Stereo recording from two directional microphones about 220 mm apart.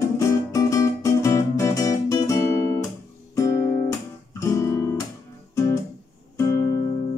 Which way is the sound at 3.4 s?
15° left (ahead or behind).